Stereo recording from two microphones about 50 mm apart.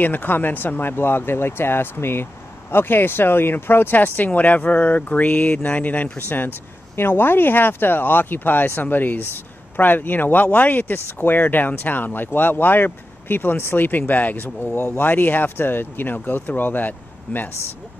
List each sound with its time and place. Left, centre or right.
0.0 s speech: left
6.1 s speech: left